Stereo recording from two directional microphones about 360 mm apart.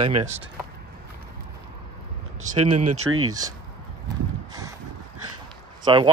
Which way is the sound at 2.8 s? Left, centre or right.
Right.